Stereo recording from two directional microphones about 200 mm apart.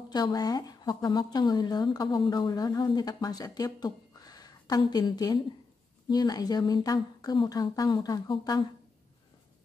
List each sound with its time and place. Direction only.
0.1 s a woman's voice: 20° left (ahead or behind)